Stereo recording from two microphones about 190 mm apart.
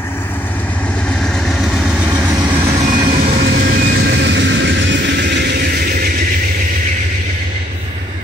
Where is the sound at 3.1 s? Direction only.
50° right (ahead or behind).